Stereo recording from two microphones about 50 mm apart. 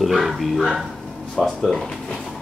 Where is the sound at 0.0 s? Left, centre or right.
Centre.